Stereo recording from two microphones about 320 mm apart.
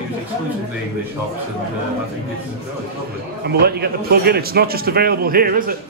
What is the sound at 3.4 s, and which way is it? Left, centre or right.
A man's voice, right.